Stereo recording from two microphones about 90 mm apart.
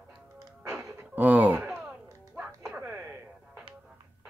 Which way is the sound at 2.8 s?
25° right (ahead or behind).